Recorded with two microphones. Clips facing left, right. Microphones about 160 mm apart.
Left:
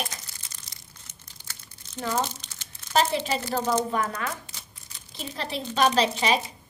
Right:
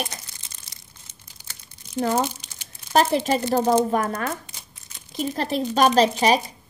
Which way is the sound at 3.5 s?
35° right (ahead or behind).